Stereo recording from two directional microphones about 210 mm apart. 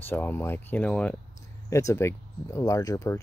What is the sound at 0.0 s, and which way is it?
Speech, 10° left (ahead or behind).